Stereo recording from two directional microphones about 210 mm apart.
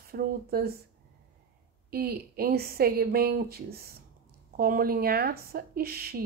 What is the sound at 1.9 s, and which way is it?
Speech, 45° right (ahead or behind).